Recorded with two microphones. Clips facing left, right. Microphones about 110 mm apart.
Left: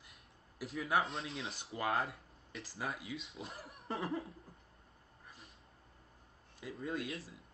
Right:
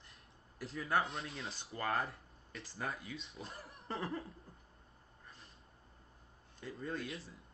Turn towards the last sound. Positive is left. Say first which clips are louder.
# left 2 dB
turn(degrees=0)  # may be behind; listen again after turning